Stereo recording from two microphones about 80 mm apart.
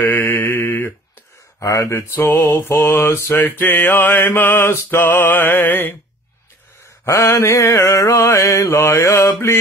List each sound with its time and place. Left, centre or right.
0.0 s mantra: left
7.2 s mantra: left